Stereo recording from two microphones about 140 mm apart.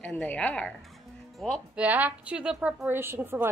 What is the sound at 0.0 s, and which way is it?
Speech, 10° left (ahead or behind).